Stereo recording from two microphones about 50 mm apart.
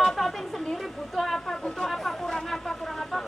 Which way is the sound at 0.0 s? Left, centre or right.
Centre.